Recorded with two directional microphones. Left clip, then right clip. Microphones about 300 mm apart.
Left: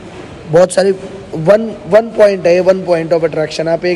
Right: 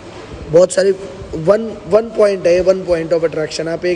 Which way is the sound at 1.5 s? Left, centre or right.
Centre.